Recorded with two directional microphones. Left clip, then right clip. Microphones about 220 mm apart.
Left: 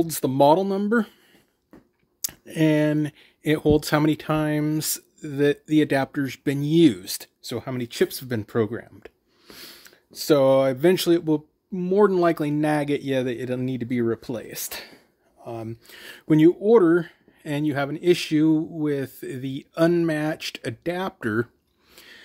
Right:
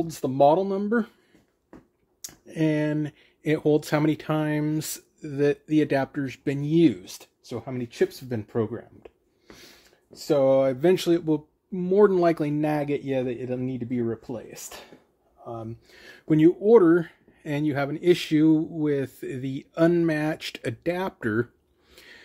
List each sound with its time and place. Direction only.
0.0 s speech: 35° left (ahead or behind)
2.2 s speech: 30° left (ahead or behind); by 21.5 s 10° left (ahead or behind)
21.9 s a sound: 10° left (ahead or behind)